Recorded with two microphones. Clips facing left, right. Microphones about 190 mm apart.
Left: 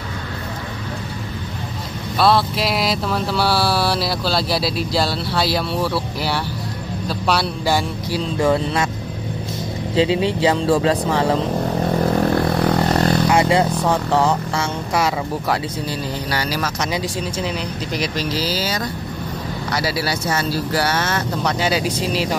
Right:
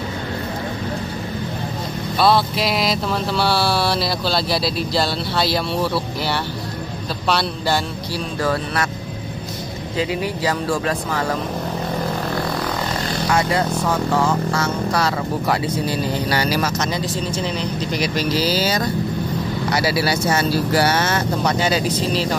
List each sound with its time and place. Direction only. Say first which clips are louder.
2.1 s a sound: even; centre (ahead or behind)
7.2 s speech: left 1 dB; 10° left (ahead or behind)
9.9 s speech: left 5 dB; 25° left (ahead or behind)
12.7 s vehicle: left 7 dB; 65° left (ahead or behind)
13.3 s speech: even; 20° left (ahead or behind)
14.9 s speech: even; 10° left (ahead or behind)
16.3 s speech: right 2 dB; 15° right (ahead or behind)
16.8 s speech: even; 10° left (ahead or behind)
17.9 s a sound: right 1 dB; centre (ahead or behind)
18.4 s speech: right 3 dB; 20° right (ahead or behind)
20.1 s speech: right 3 dB; 20° right (ahead or behind)
21.5 s a sound: even; 5° left (ahead or behind)
22.0 s speech: even; 10° left (ahead or behind)